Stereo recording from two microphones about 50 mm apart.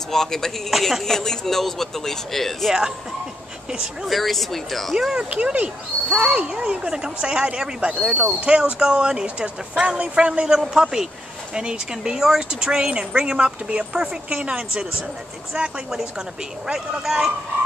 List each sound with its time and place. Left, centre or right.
0.1 s speech: centre
0.7 s speech: centre
4.0 s speech: centre
5.1 s speech: right; by 17.3 s centre